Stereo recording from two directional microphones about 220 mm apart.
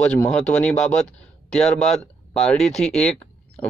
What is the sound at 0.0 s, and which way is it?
Speech, 5° left (ahead or behind).